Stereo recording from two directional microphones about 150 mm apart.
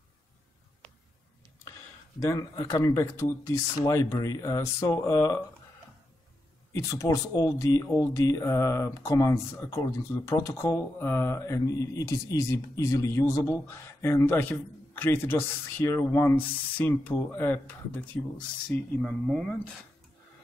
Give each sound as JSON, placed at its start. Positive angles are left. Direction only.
{"t": 2.2, "sound": "speech", "side_deg": 20}
{"t": 6.7, "sound": "speech", "side_deg": 20}